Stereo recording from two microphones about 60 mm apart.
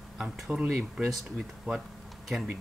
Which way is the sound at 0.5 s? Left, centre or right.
Right.